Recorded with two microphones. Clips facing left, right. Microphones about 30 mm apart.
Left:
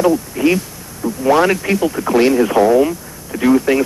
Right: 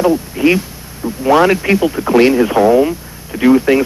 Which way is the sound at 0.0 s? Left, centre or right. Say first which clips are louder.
Right 1 dB; right.